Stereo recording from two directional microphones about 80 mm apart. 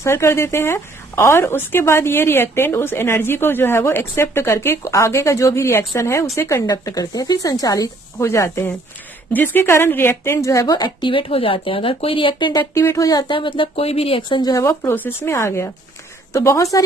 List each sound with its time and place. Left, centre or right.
0.0 s a woman's voice: left
6.7 s a woman's voice: left
11.0 s speech: left
12.7 s speech: left
13.3 s speech: left
14.5 s a woman's voice: left